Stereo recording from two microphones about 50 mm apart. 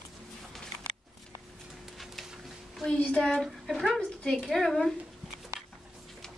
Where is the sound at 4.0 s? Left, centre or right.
Centre.